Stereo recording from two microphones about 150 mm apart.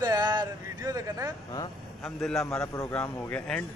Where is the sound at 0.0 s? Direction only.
25° right (ahead or behind).